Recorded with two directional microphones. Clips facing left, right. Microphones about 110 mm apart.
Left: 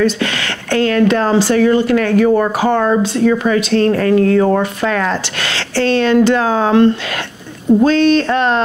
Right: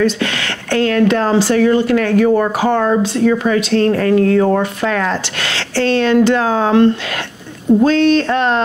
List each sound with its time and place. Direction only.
0.0 s speech: 20° left (ahead or behind)